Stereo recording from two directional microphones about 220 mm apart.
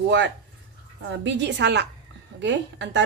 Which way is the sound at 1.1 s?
55° right (ahead or behind).